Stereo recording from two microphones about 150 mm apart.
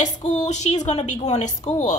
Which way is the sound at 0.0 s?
50° left (ahead or behind).